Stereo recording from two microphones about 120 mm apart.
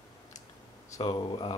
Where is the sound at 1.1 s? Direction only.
40° left (ahead or behind).